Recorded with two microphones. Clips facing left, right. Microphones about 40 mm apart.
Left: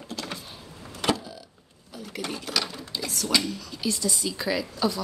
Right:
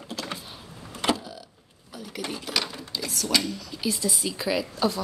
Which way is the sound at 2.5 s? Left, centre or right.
Centre.